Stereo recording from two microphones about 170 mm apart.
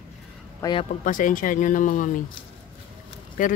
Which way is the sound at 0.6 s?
25° left (ahead or behind).